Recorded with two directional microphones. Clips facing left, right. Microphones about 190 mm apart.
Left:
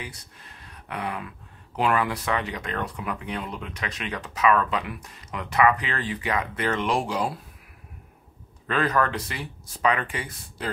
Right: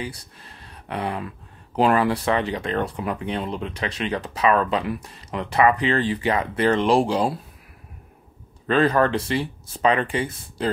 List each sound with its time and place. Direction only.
0.0 s speech: 35° right (ahead or behind)
8.6 s speech: 30° right (ahead or behind)